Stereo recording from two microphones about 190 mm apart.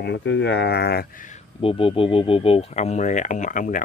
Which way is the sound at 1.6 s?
30° left (ahead or behind).